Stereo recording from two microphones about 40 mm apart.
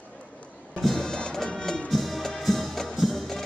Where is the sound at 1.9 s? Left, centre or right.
Centre.